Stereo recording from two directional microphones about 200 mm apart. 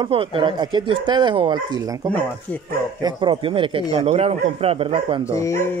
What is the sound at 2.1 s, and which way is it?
Speech, 5° left (ahead or behind).